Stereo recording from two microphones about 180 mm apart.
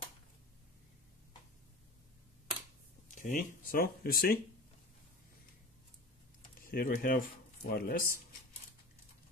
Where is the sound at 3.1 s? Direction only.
45° left (ahead or behind).